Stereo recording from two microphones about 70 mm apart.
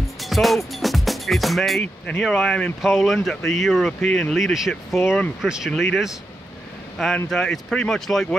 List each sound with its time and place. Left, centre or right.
0.2 s music: centre
2.0 s speech: centre
2.8 s speech: centre
7.2 s speech: centre